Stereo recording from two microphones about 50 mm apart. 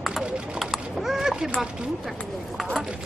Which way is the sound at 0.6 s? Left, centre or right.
Centre.